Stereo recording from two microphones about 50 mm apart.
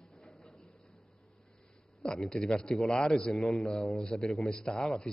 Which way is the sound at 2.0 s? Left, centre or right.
Centre.